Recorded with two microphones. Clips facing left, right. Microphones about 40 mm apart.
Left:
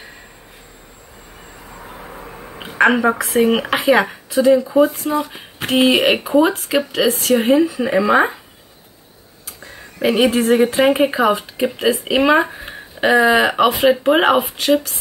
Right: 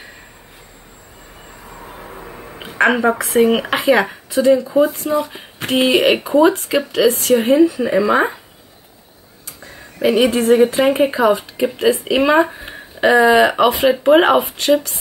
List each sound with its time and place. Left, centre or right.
2.0 s speech: centre
9.6 s speech: centre